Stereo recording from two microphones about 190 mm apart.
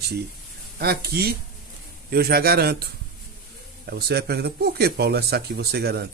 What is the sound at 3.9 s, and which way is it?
Speech, 55° right (ahead or behind).